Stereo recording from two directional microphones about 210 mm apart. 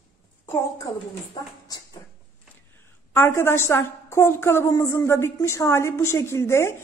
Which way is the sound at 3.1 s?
10° left (ahead or behind).